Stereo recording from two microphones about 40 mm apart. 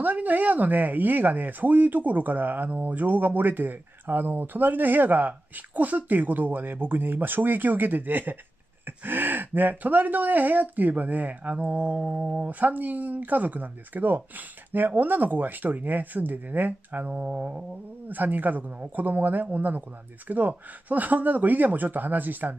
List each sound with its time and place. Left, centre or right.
0.0 s speech: right
11.5 s mantra: right
12.1 s speech: right
12.4 s speech: right
18.0 s speech: right